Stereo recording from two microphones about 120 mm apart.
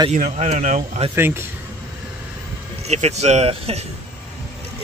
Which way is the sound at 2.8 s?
65° right (ahead or behind).